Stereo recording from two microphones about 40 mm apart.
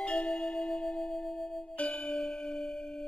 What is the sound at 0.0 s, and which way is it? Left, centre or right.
Music, left.